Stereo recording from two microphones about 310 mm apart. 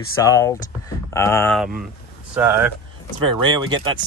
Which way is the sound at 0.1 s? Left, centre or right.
Centre.